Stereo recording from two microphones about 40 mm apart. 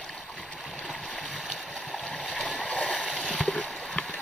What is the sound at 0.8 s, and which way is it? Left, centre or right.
Stream, left.